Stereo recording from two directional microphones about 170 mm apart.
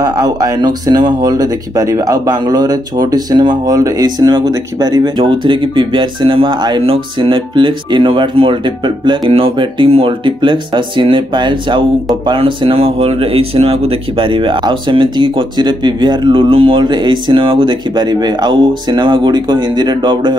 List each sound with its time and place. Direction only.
0.0 s speech: 20° right (ahead or behind)